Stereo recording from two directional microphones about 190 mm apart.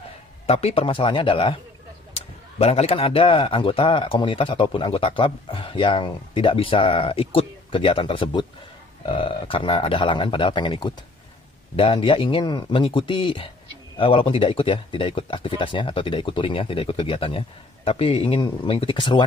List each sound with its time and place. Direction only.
0.5 s speech: 30° left (ahead or behind)
2.6 s speech: 30° left (ahead or behind)